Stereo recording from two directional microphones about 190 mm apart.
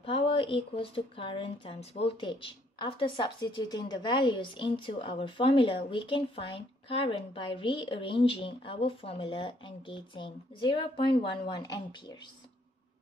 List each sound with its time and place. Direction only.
0.0 s speech: 30° left (ahead or behind)